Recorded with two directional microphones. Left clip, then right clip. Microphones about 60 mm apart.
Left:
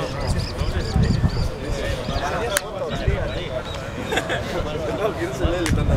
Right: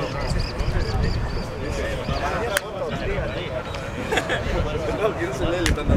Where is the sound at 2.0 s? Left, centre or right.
Centre.